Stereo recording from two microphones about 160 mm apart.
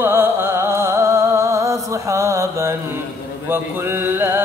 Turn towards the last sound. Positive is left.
turn(degrees=-15)  # may be behind; listen again after turning